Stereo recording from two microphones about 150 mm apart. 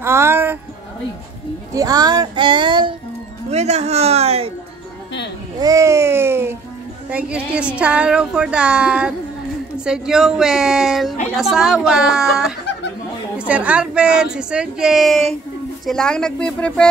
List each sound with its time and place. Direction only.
0.0 s music: 15° right (ahead or behind)
1.7 s speech: 25° right (ahead or behind)
3.4 s speech: 45° right (ahead or behind)
5.6 s a sound: 20° right (ahead or behind)
7.1 s a woman's voice: 10° right (ahead or behind)